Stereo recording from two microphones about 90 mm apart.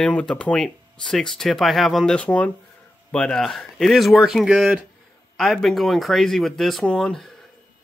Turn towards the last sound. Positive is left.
turn(degrees=5)  # may be behind; listen again after turning